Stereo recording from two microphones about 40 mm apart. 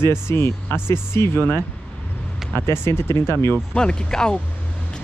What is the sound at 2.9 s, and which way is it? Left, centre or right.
Speech, left.